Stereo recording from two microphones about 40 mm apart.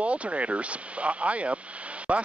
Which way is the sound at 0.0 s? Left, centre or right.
Right.